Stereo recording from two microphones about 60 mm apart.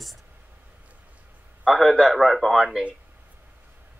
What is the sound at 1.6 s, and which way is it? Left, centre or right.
A man's voice, centre.